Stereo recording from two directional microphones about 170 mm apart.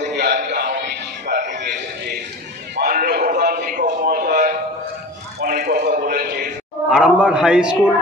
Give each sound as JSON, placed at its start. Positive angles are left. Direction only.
{"t": 0.1, "sound": "music", "side_deg": -70}
{"t": 1.6, "sound": "a sound", "side_deg": -65}
{"t": 6.9, "sound": "a man's voice", "side_deg": -5}